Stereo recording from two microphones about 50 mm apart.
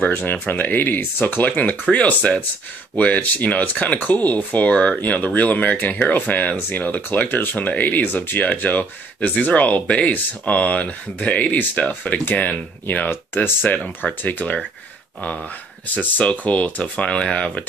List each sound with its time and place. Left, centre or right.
0.1 s speech: left
14.0 s speech: centre
14.4 s speech: left
15.9 s speech: left